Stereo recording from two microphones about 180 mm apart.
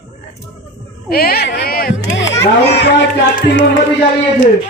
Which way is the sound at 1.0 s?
55° left (ahead or behind).